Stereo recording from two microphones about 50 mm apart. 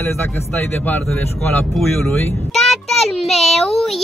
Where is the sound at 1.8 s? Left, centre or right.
Centre.